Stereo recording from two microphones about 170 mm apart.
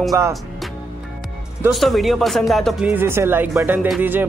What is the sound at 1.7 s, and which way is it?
Speech, centre (ahead or behind).